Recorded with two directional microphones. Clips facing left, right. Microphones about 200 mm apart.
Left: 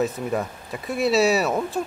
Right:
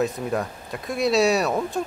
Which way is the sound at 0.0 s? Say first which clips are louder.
Even; centre (ahead or behind).